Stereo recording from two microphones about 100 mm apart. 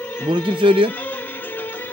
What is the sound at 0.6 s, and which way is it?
Speech, 60° right (ahead or behind).